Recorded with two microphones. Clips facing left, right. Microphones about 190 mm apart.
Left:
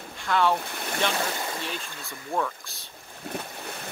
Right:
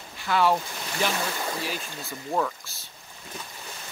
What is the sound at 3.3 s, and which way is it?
Boat, 60° left (ahead or behind).